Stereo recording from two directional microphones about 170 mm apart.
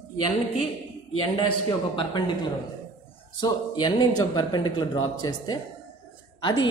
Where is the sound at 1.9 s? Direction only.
25° left (ahead or behind).